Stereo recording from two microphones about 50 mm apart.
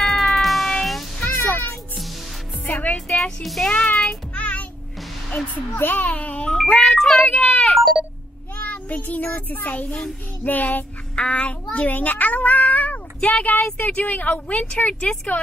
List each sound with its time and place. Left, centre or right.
0.0 s music: centre
1.2 s a sound: left
3.1 s music: centre
3.6 s a child's voice: left
3.9 s child singing: centre
4.4 s music: left
5.5 s speech: left
6.4 s speech: centre
7.2 s a child's voice: centre
8.6 s a child's voice: left
11.1 s a child's voice: left